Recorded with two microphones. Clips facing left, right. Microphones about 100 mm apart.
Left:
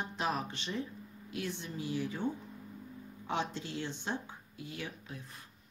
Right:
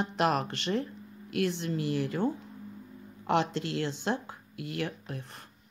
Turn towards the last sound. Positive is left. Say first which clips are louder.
# right 6 dB
turn(degrees=-65)  # may be behind; listen again after turning